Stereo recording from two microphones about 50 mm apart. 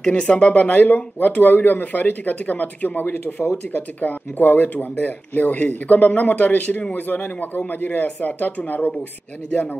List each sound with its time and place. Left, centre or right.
0.0 s speech: left